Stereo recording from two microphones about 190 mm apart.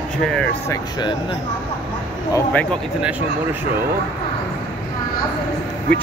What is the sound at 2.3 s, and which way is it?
Speech, 10° left (ahead or behind).